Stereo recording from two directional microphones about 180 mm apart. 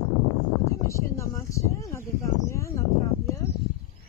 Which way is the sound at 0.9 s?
15° left (ahead or behind).